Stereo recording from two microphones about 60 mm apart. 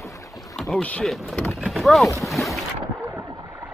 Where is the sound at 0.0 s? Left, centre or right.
Left.